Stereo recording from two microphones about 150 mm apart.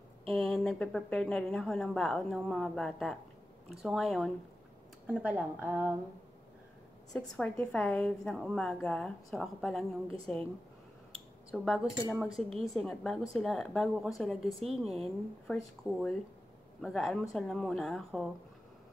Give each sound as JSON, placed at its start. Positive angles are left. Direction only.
{"t": 0.3, "sound": "speech", "side_deg": 0}
{"t": 7.1, "sound": "speech", "side_deg": 5}
{"t": 11.5, "sound": "speech", "side_deg": 0}